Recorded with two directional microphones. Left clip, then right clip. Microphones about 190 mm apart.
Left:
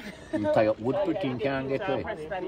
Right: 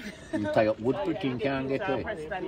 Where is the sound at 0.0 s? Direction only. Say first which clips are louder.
Left 3 dB; 50° left (ahead or behind).